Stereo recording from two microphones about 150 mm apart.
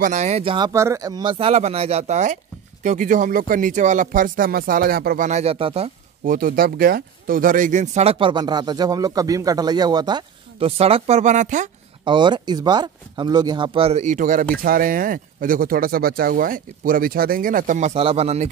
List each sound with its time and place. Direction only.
0.0 s speech: 50° right (ahead or behind)
0.7 s speech: 20° right (ahead or behind); by 5.9 s 40° right (ahead or behind)
6.2 s speech: 70° right (ahead or behind); by 10.7 s 30° right (ahead or behind)
10.8 s speech: 40° right (ahead or behind); by 11.7 s 55° right (ahead or behind)
12.0 s speech: 30° right (ahead or behind)
13.7 s speech: 45° right (ahead or behind)
14.6 s speech: 70° right (ahead or behind); by 18.5 s 45° right (ahead or behind)